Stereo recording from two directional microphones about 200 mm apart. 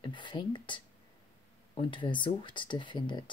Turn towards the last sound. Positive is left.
turn(degrees=20)  # may be behind; listen again after turning